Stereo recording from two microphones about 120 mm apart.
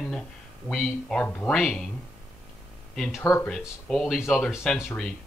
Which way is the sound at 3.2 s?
25° left (ahead or behind).